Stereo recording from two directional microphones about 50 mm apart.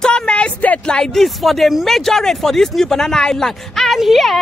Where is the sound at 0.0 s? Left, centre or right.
Left.